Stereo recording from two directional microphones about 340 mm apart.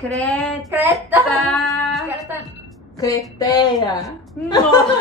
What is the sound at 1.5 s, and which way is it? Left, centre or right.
Music, centre.